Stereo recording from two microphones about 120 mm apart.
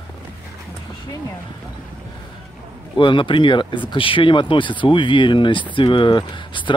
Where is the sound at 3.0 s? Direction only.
40° left (ahead or behind).